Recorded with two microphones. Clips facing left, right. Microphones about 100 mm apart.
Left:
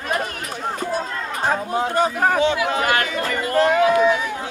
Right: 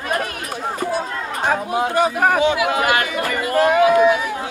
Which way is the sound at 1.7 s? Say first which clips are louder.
Right 2 dB; 10° right (ahead or behind).